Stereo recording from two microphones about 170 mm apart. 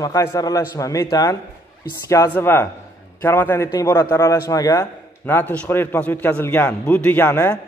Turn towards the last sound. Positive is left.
turn(degrees=15)  # may be behind; listen again after turning